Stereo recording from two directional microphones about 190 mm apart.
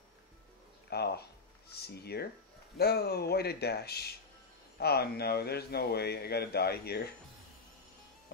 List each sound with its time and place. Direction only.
0.8 s speech: 60° left (ahead or behind)